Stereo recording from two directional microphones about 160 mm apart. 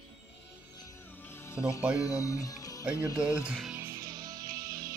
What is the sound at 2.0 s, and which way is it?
Speech, 20° left (ahead or behind).